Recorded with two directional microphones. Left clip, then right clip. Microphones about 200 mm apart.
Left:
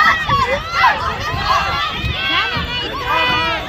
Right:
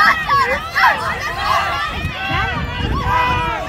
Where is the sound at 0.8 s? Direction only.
15° right (ahead or behind).